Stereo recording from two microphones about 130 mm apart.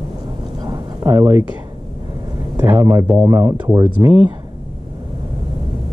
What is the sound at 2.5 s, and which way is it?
A man's voice, 20° right (ahead or behind).